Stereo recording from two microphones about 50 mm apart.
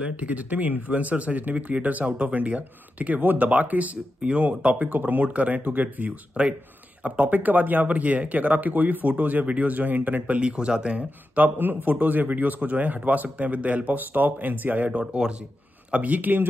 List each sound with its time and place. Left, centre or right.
0.0 s speech: right
6.4 s a man's voice: right
14.9 s speech: centre
15.9 s a man's voice: right